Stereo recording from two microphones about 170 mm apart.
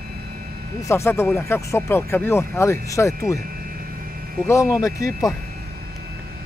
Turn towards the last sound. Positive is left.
turn(degrees=20)  # may be behind; listen again after turning